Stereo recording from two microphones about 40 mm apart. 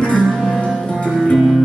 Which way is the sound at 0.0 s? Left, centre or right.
Left.